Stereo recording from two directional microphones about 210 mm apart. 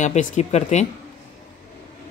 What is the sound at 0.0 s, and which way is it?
Speech, 35° left (ahead or behind).